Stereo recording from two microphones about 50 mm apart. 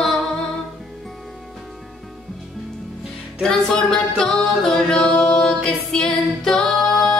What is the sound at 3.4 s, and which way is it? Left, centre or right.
Music, centre.